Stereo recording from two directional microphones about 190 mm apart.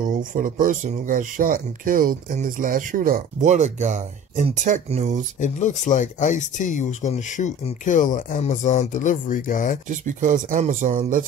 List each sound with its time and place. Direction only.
0.0 s speech: 45° right (ahead or behind)
5.4 s speech: 40° left (ahead or behind)
9.8 s speech: 40° right (ahead or behind)